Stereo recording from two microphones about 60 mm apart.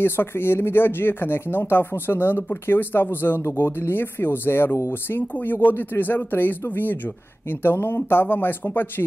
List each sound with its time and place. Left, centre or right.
0.0 s speech: left
5.5 s speech: left